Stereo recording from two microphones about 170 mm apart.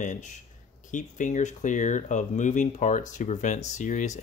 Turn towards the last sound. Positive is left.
turn(degrees=45)  # may be behind; listen again after turning